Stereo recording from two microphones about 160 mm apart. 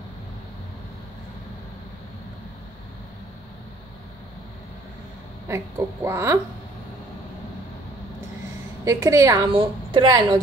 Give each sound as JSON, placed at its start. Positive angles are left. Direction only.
{"t": 5.5, "sound": "speech", "side_deg": -15}
{"t": 8.8, "sound": "a woman's voice", "side_deg": -20}
{"t": 9.5, "sound": "a woman's voice", "side_deg": -30}